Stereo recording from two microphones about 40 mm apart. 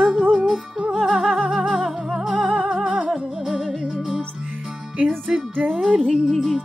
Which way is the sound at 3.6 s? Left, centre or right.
Centre.